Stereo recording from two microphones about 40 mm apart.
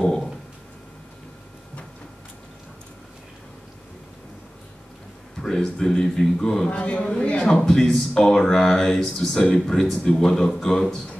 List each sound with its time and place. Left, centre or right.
0.0 s a sound: centre
5.4 s speech: centre
6.7 s a man's voice: left
7.4 s a man's voice: centre